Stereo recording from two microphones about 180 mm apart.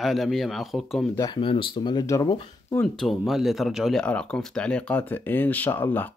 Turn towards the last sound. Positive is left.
turn(degrees=10)  # may be behind; listen again after turning